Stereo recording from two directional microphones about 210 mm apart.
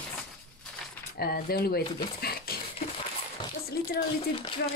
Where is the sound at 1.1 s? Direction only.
45° left (ahead or behind).